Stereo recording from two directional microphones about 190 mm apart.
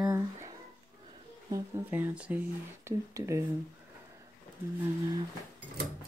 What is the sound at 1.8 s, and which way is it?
Speech, 10° right (ahead or behind).